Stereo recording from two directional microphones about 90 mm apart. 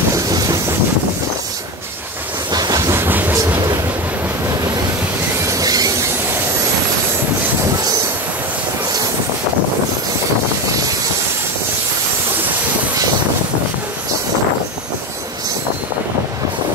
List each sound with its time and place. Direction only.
0.1 s train: 45° right (ahead or behind)
2.5 s train: 45° right (ahead or behind)
2.9 s train: 25° right (ahead or behind)
5.5 s a sound: 45° right (ahead or behind)